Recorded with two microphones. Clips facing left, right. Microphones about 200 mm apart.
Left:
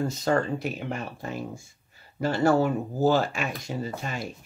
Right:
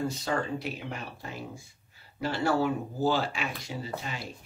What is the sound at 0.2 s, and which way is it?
Speech, 45° left (ahead or behind).